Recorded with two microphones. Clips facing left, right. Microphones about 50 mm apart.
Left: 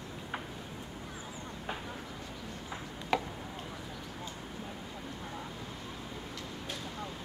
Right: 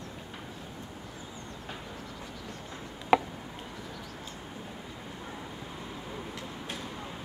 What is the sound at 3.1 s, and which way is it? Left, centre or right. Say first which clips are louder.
Chopping: right 8 dB; centre.